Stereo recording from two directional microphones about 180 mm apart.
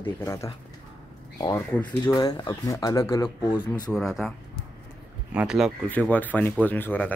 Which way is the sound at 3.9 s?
Centre (ahead or behind).